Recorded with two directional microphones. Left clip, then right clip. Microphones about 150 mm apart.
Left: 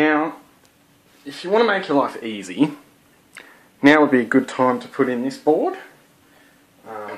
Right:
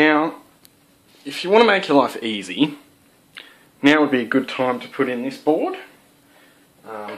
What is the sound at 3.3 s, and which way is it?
Speech, 15° left (ahead or behind).